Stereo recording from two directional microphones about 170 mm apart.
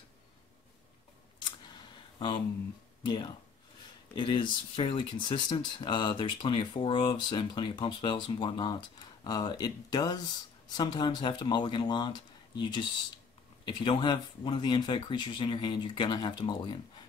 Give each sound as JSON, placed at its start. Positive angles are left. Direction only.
{"t": 2.1, "sound": "speech", "side_deg": 30}